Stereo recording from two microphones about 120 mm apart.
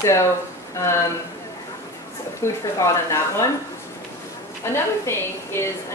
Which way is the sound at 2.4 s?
25° left (ahead or behind).